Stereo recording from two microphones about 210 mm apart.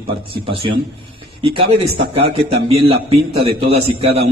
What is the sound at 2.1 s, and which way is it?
A man's voice, 30° right (ahead or behind).